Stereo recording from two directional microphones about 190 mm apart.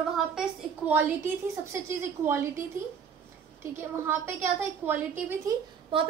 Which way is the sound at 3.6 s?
10° right (ahead or behind).